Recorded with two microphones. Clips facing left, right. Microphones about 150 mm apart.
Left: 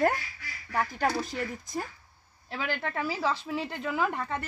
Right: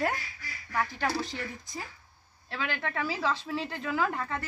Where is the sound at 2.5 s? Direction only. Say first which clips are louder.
Left 1 dB; 10° left (ahead or behind).